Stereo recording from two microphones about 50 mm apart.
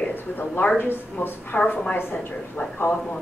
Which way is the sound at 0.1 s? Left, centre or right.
Left.